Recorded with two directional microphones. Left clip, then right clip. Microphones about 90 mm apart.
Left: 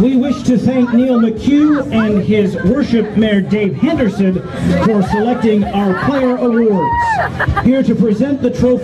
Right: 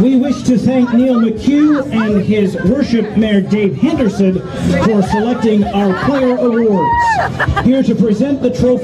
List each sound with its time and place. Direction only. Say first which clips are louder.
0.5 s speech: right 1 dB; 45° right (ahead or behind)
2.2 s a man's voice: even; 10° left (ahead or behind)
4.6 s speech: right 1 dB; 50° right (ahead or behind)